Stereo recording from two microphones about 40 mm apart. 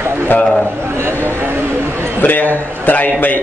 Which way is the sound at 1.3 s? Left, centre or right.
Right.